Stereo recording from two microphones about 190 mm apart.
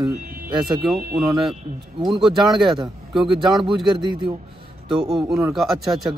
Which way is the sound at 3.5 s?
25° right (ahead or behind).